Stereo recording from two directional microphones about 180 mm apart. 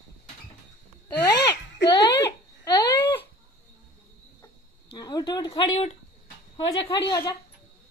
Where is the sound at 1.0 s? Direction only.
20° left (ahead or behind).